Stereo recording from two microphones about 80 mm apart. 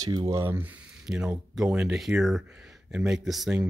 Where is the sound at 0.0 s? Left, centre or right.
Right.